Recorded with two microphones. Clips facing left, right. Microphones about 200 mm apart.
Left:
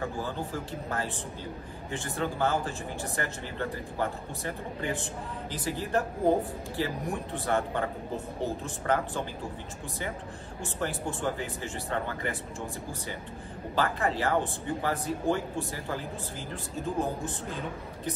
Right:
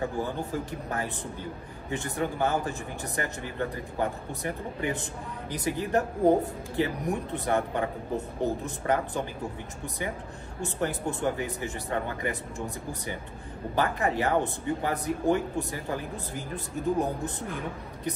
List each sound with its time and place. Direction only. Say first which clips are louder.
0.2 s speech: right 3 dB; 15° right (ahead or behind)
10.6 s speech: right 3 dB; 20° right (ahead or behind)